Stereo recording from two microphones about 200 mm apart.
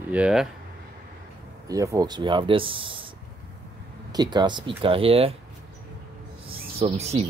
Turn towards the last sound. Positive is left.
turn(degrees=-30)  # may be behind; listen again after turning